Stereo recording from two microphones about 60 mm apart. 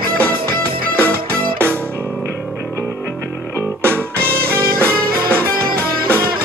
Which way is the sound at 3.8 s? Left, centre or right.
Right.